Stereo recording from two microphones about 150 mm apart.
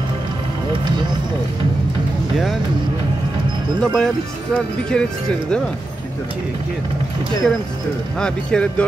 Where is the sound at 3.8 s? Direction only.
5° left (ahead or behind).